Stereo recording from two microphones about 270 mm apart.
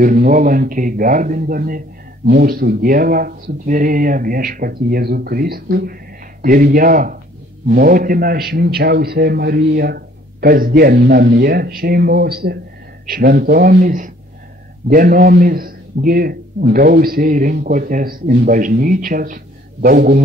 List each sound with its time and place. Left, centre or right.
0.0 s a man's voice: right